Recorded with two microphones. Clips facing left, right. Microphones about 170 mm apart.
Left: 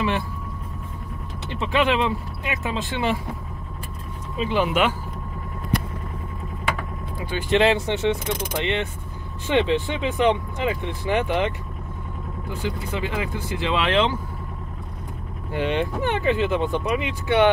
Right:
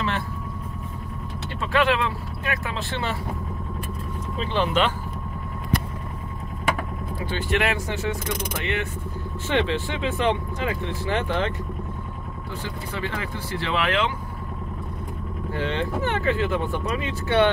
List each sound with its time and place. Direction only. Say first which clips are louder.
1.6 s speech: left 1 dB; 20° left (ahead or behind)
4.4 s speech: left 2 dB; 10° left (ahead or behind)
7.2 s speech: left 6 dB; 20° left (ahead or behind)
12.6 s speech: left 4 dB; 15° left (ahead or behind)
15.5 s speech: left 3 dB; 15° left (ahead or behind)